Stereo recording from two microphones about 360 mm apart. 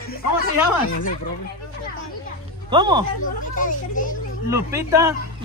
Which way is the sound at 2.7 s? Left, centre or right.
Centre.